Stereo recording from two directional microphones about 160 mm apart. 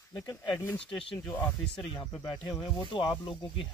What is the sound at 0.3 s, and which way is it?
Speech, 15° left (ahead or behind).